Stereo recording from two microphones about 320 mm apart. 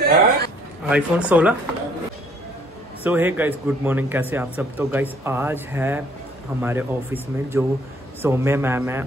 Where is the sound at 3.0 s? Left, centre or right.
Centre.